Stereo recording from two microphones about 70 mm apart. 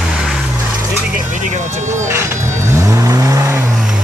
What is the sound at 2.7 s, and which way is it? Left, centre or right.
Vehicle, right.